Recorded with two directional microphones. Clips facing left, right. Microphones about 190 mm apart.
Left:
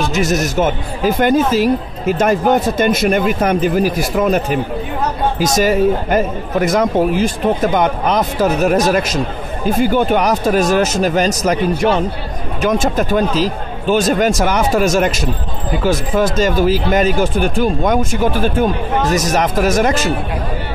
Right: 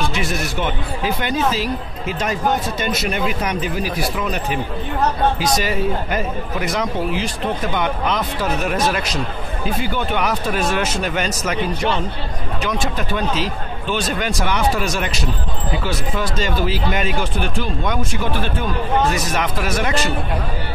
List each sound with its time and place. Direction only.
0.1 s speech: 40° left (ahead or behind)